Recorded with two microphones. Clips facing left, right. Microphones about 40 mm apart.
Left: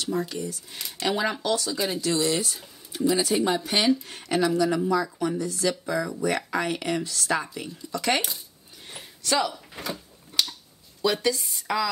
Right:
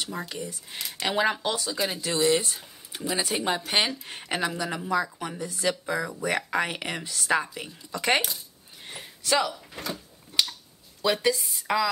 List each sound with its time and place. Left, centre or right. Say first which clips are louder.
0.0 s speech: left 5 dB; centre
2.2 s speech: right 3 dB; right
8.9 s door: even; centre
10.3 s a sound: even; centre
11.0 s speech: left 1 dB; centre
11.3 s a woman's voice: right 1 dB; centre